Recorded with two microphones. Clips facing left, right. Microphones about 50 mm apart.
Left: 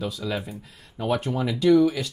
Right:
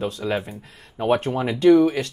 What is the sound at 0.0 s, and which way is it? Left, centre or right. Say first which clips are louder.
Speech: right 4 dB; right.